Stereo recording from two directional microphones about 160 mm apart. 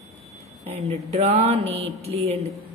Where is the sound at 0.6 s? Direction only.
40° right (ahead or behind).